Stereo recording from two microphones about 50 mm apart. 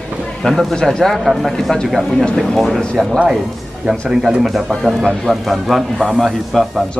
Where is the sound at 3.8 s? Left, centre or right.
Centre.